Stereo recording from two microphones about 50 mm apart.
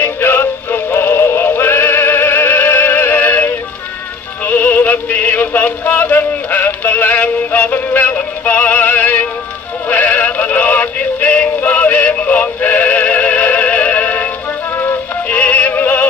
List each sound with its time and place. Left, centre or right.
0.0 s synthetic singing: left
4.5 s music: left
9.8 s synthetic singing: left
14.8 s music: left
15.3 s music: left